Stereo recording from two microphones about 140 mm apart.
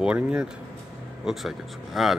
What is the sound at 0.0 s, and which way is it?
Speech, 5° right (ahead or behind).